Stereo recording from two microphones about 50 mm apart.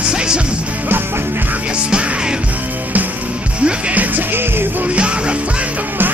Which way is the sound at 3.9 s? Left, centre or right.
Right.